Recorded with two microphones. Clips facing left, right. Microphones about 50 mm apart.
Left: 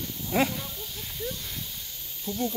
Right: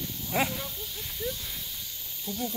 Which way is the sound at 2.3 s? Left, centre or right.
Left.